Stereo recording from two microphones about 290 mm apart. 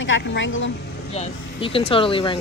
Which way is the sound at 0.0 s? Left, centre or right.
Left.